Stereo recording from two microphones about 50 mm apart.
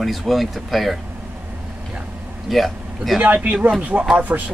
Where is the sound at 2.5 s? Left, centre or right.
Centre.